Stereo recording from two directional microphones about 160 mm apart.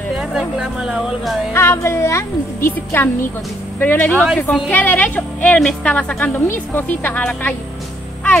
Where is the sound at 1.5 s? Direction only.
15° left (ahead or behind).